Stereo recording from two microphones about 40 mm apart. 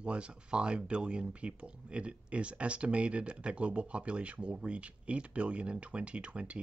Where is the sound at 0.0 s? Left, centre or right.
Right.